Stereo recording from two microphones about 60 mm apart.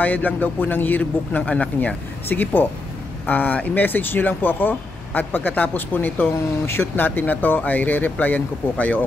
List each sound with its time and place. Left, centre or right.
0.0 s a man's voice: left
2.2 s speech: left
6.6 s speech: left
7.1 s a man's voice: left